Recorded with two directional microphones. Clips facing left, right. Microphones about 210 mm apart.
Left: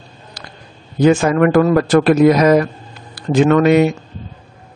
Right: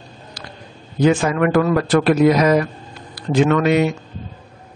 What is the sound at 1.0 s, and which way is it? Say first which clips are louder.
Speech: left 4 dB; 45° left (ahead or behind).